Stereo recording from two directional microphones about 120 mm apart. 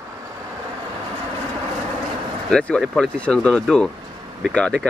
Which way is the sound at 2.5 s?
10° left (ahead or behind).